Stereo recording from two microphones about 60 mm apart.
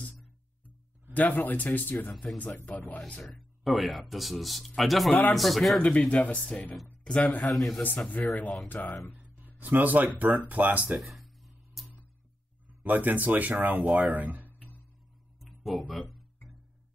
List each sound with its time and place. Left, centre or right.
1.1 s speech: left
3.2 s speech: centre
5.8 s speech: centre
9.6 s speech: right
11.0 s a sound: centre
12.8 s speech: right
15.4 s music: centre